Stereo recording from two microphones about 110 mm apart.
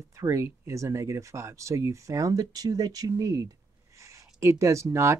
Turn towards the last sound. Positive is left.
turn(degrees=-25)  # may be behind; listen again after turning